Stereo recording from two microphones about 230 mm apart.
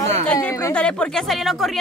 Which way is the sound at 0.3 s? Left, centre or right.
Centre.